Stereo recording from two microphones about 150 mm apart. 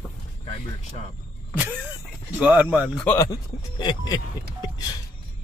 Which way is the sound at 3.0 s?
10° left (ahead or behind).